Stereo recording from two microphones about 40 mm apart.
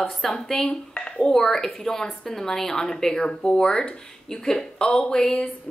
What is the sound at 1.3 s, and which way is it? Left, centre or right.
Speech, centre.